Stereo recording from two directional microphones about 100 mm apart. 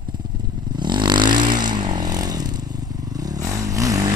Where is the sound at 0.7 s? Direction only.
50° right (ahead or behind).